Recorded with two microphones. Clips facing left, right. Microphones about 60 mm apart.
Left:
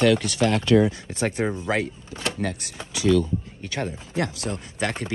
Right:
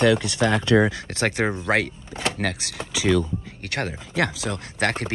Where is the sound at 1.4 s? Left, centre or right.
Right.